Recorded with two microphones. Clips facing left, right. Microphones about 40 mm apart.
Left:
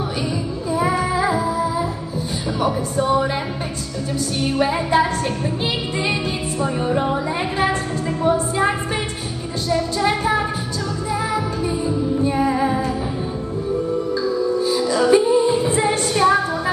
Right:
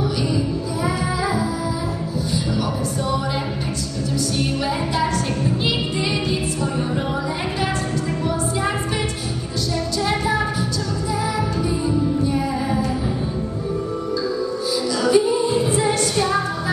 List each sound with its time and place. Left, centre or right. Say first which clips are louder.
0.8 s music: left 3 dB; left
6.6 s music: left 3 dB; left
8.2 s music: left 8 dB; left
12.2 s music: left 3 dB; left
14.7 s music: left 1 dB; left